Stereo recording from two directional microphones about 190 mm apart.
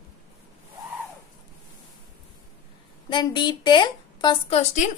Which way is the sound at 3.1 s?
25° left (ahead or behind).